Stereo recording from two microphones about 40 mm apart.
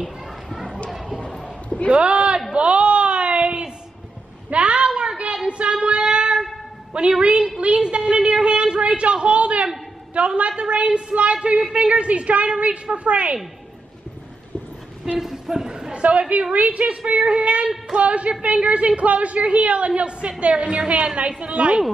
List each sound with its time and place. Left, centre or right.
0.5 s children playing: centre
0.8 s a sound: centre
1.9 s speech: right
2.5 s a sound: right
5.9 s child singing: right
6.9 s a woman's voice: right
15.1 s speech: centre
15.9 s a woman's voice: right